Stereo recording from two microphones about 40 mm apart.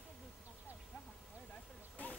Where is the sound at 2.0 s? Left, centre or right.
Left.